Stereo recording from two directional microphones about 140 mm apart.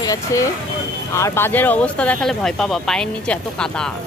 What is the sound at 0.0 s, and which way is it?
Speech, 25° left (ahead or behind).